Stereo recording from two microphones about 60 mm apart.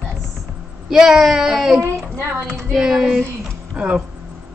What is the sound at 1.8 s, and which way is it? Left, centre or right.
Speech, right.